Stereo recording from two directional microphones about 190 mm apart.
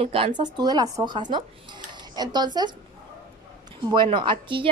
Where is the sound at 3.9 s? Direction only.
25° right (ahead or behind).